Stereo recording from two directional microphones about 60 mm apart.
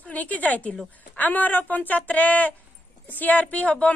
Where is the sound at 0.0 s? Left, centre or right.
Left.